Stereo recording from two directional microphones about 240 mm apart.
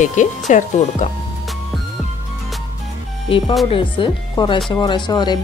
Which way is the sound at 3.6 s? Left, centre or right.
Left.